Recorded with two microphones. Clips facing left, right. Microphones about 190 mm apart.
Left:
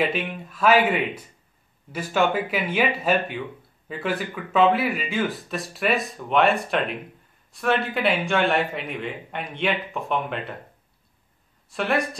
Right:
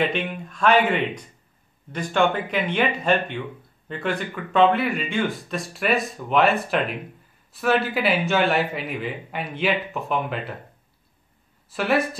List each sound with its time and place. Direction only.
0.0 s speech: 5° left (ahead or behind)
11.7 s speech: 5° right (ahead or behind)